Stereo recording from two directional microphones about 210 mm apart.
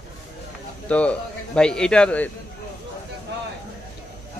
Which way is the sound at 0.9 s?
5° left (ahead or behind).